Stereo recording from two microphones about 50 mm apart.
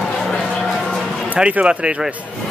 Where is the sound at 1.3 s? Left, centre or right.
Right.